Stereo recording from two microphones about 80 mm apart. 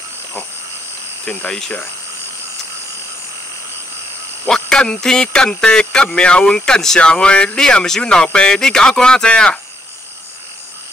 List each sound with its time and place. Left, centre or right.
1.2 s speech: centre
4.5 s a sound: centre
6.1 s speech: centre